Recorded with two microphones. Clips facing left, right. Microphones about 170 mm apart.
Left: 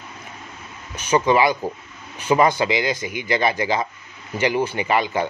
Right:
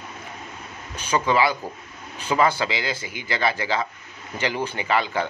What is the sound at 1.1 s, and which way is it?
Speech, 15° left (ahead or behind).